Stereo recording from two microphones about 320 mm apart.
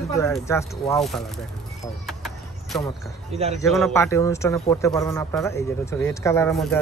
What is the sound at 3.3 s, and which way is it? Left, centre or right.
Speech, centre.